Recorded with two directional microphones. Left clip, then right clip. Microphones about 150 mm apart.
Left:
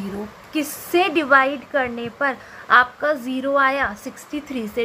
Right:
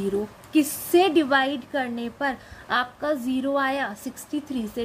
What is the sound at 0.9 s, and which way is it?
A woman's voice, 15° right (ahead or behind).